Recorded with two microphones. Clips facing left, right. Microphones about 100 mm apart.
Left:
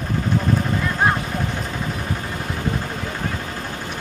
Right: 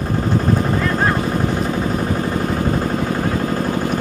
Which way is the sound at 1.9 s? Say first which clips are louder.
Right 8 dB; 45° right (ahead or behind).